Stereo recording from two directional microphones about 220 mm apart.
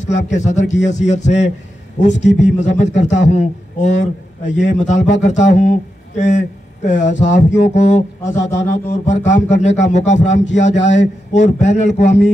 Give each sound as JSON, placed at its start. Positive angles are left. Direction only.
{"t": 0.0, "sound": "a man's voice", "side_deg": 35}